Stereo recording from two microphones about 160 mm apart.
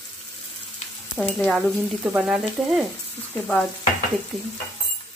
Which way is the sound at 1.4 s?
Centre (ahead or behind).